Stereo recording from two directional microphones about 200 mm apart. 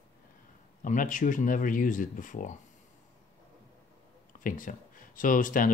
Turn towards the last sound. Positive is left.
turn(degrees=40)  # may be behind; listen again after turning